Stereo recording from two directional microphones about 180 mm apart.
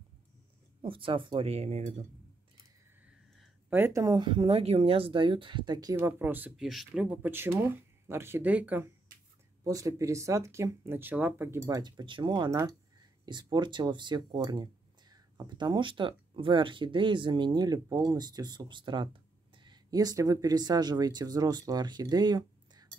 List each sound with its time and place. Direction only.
0.8 s speech: 30° right (ahead or behind)
3.7 s speech: 15° right (ahead or behind)